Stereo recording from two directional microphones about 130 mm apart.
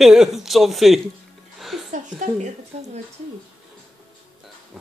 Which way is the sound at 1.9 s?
80° right.